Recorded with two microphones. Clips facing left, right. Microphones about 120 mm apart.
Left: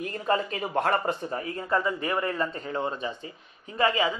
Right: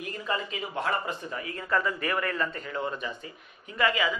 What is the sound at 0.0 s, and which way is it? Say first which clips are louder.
Speech: left 5 dB; 40° left (ahead or behind).